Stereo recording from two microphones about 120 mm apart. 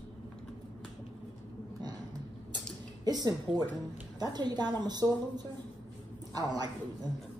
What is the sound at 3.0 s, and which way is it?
A woman's voice, 35° right (ahead or behind).